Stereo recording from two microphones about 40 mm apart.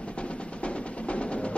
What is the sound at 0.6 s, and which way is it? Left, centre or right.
Music, left.